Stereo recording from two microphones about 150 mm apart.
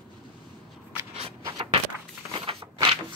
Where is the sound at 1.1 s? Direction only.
35° right (ahead or behind).